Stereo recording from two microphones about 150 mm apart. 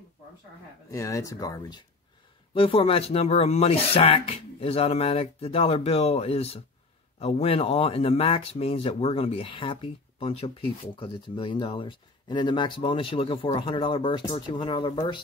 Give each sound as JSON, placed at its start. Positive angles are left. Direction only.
{"t": 0.8, "sound": "speech", "side_deg": 20}